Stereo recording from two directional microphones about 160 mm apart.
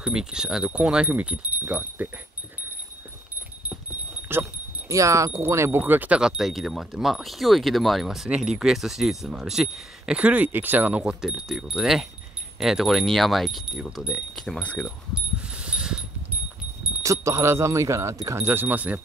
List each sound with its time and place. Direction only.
0.0 s speech: 5° right (ahead or behind)
4.3 s speech: 15° right (ahead or behind); by 14.9 s 5° left (ahead or behind)
15.1 s a sound: 5° right (ahead or behind)
17.0 s speech: 20° right (ahead or behind)